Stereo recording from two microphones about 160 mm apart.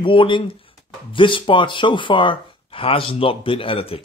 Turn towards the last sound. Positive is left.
turn(degrees=35)  # may be behind; listen again after turning